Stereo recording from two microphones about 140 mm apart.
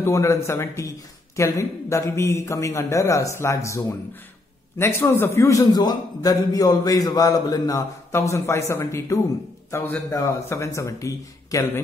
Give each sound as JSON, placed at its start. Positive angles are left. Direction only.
{"t": 0.0, "sound": "a man's voice", "side_deg": 20}